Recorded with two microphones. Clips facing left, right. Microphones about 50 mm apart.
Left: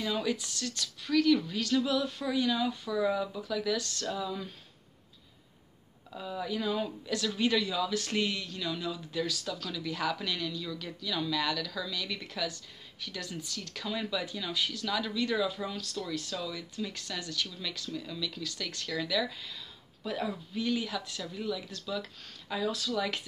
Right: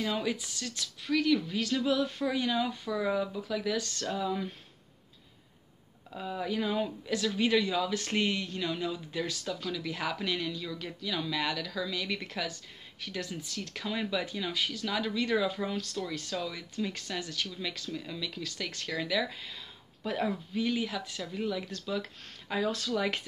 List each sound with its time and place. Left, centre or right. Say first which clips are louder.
0.0 s speech: even; right
1.0 s speech: left 2 dB; centre
2.0 s speech: even; right
3.8 s speech: right 2 dB; right
6.1 s speech: right 2 dB; right
7.2 s speech: right 2 dB; centre
7.6 s speech: right 1 dB; right
9.6 s speech: even; centre
20.1 s speech: right 3 dB; right
20.5 s speech: left 1 dB; right